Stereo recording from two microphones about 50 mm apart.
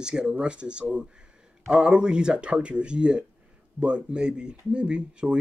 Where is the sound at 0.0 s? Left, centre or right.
Centre.